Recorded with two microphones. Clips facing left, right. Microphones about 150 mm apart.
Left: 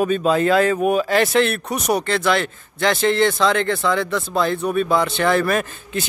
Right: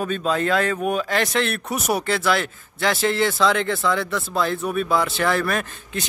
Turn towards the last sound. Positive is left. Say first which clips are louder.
# left 4 dB
turn(degrees=0)  # may be behind; listen again after turning